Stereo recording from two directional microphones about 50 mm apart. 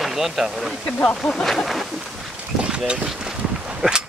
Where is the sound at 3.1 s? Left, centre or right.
Centre.